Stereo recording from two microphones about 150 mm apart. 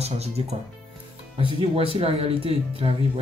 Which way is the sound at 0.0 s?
45° right (ahead or behind).